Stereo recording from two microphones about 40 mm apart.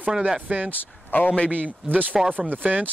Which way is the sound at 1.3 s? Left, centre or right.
Left.